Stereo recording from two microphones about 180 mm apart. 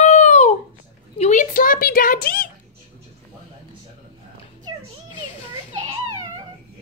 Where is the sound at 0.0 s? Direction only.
40° left (ahead or behind).